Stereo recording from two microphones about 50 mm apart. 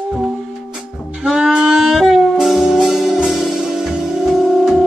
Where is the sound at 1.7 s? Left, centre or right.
Centre.